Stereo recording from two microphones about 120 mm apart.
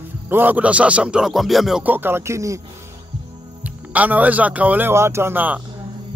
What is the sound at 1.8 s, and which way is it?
Speech, 15° right (ahead or behind).